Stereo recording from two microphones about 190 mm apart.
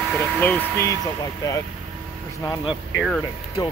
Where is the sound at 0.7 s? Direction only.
20° right (ahead or behind).